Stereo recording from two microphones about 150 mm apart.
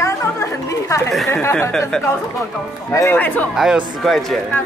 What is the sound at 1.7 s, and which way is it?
Speech, 5° left (ahead or behind).